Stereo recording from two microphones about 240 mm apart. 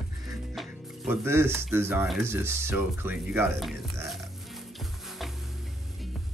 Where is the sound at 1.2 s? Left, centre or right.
Centre.